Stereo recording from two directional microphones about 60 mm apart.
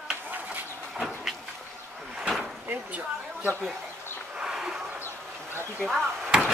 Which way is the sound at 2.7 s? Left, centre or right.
Right.